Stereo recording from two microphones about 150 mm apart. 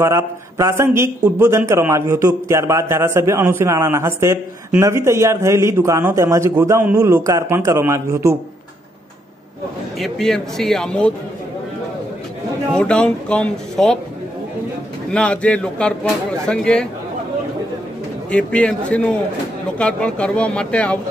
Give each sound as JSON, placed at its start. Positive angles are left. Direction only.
{"t": 0.0, "sound": "a man's voice", "side_deg": -20}
{"t": 9.9, "sound": "speech", "side_deg": 0}
{"t": 12.7, "sound": "a man's voice", "side_deg": 5}
{"t": 15.0, "sound": "a man's voice", "side_deg": 5}
{"t": 18.3, "sound": "a man's voice", "side_deg": 10}